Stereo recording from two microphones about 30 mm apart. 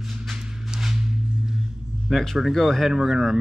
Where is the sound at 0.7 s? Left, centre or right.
Centre.